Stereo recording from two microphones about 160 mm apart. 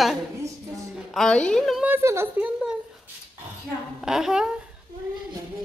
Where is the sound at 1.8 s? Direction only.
15° right (ahead or behind).